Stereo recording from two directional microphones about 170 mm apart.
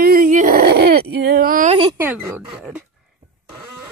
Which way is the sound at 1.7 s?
30° right (ahead or behind).